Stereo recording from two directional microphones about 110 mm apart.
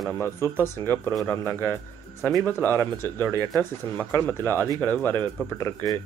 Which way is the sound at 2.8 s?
15° left (ahead or behind).